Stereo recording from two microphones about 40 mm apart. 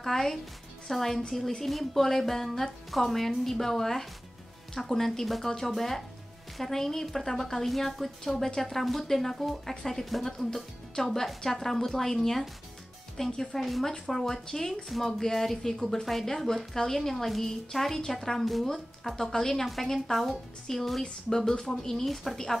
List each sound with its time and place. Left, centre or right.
0.0 s a woman's voice: centre